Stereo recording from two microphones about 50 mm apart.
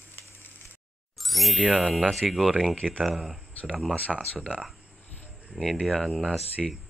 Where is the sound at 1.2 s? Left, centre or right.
Centre.